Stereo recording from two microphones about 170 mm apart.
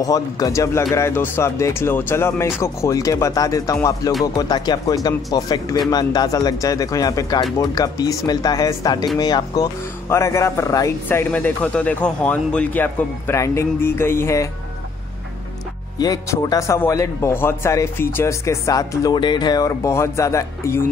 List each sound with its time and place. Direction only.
0.0 s speech: 20° left (ahead or behind)
16.0 s speech: 20° left (ahead or behind)